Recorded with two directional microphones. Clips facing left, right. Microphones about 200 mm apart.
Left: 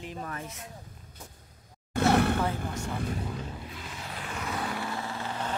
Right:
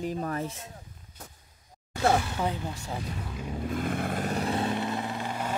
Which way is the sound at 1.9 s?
60° left (ahead or behind).